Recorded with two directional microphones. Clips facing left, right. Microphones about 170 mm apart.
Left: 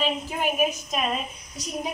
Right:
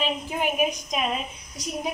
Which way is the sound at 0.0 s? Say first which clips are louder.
Even; 15° right (ahead or behind).